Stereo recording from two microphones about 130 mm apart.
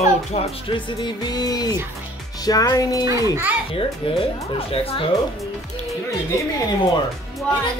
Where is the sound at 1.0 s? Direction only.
30° left (ahead or behind).